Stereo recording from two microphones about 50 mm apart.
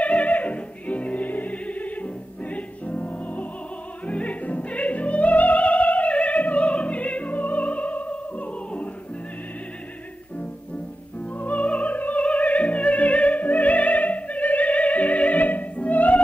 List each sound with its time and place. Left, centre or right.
0.0 s opera: left
4.0 s music: left
11.1 s music: left